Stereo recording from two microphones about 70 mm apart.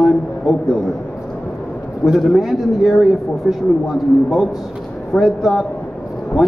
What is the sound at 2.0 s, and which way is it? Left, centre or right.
Speech, centre.